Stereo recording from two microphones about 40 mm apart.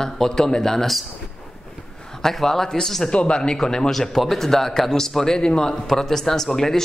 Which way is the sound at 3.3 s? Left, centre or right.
Centre.